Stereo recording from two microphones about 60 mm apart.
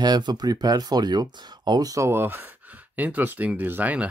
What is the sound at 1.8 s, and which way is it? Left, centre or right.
Speech, right.